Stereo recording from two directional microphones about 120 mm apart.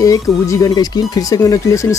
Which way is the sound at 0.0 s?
30° left (ahead or behind).